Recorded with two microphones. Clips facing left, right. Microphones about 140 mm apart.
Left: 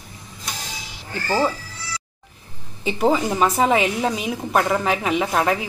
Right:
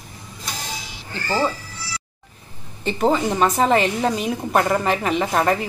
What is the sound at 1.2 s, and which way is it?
Speech, 10° left (ahead or behind).